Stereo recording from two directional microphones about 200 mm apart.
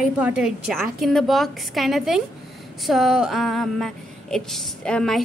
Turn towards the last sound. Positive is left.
turn(degrees=5)  # may be behind; listen again after turning